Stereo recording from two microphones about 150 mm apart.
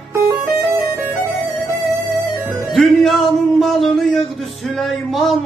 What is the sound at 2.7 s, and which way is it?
Music, centre (ahead or behind).